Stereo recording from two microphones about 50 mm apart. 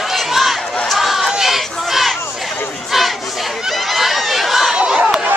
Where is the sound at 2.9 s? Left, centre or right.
Centre.